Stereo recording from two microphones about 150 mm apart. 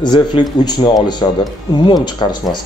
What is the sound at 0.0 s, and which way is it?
A man's voice, 30° left (ahead or behind).